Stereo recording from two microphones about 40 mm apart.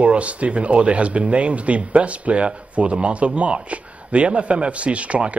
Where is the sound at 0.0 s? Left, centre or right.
Right.